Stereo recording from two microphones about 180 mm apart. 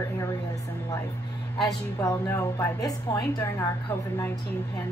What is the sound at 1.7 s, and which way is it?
A woman's voice, 15° left (ahead or behind).